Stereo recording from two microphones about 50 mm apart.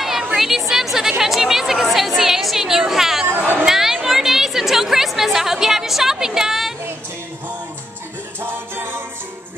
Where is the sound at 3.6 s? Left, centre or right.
Centre.